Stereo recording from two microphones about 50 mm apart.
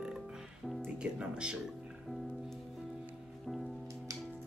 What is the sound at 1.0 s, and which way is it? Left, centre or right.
Speech, centre.